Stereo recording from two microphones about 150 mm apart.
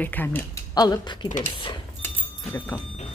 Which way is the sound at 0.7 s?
25° left (ahead or behind).